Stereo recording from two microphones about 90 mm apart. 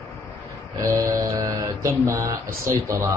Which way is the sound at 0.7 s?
55° right (ahead or behind).